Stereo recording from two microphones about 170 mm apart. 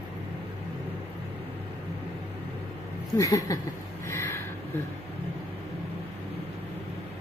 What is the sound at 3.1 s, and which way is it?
Speech, 20° left (ahead or behind).